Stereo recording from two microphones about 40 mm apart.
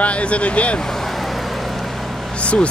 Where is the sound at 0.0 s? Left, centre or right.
Left.